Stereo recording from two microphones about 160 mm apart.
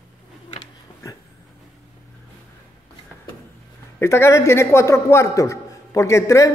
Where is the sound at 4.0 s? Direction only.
15° left (ahead or behind).